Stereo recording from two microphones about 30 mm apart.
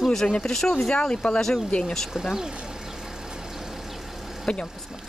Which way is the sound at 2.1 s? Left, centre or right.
Centre.